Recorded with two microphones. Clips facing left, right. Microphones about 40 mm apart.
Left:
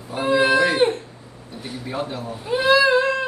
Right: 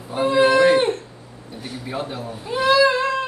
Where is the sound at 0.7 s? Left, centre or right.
Centre.